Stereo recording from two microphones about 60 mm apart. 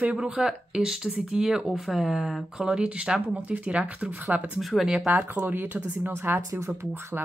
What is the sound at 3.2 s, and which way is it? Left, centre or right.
Speech, right.